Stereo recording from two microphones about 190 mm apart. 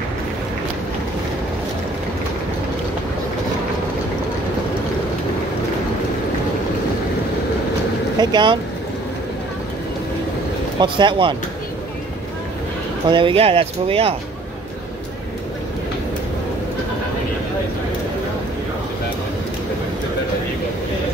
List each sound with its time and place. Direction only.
8.2 s speech: 25° right (ahead or behind)
10.8 s speech: 25° right (ahead or behind)
13.1 s speech: 30° right (ahead or behind)